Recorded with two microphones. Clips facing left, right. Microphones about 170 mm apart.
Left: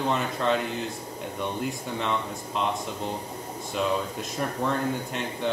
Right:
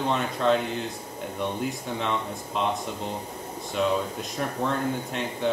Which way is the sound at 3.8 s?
Centre (ahead or behind).